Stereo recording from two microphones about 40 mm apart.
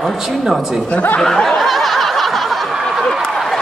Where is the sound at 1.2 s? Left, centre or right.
Centre.